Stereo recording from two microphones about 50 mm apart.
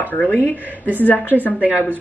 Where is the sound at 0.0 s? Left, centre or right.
Left.